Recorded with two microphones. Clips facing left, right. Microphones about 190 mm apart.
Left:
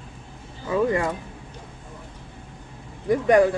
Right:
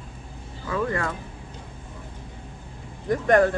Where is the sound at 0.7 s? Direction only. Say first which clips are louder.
Left 5 dB; 15° left (ahead or behind).